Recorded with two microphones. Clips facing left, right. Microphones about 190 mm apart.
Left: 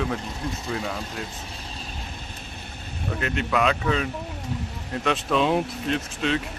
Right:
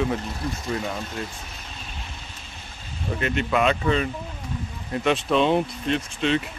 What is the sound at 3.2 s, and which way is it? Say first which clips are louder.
Speech: right 2 dB; centre (ahead or behind).